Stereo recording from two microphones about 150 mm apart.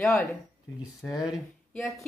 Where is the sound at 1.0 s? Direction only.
30° left (ahead or behind).